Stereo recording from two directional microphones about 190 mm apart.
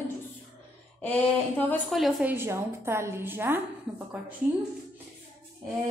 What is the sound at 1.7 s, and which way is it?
Speech, centre (ahead or behind).